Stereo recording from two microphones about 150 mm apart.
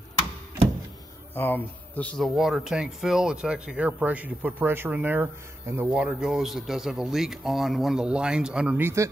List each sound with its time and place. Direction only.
1.3 s speech: 10° left (ahead or behind); by 9.1 s 15° right (ahead or behind)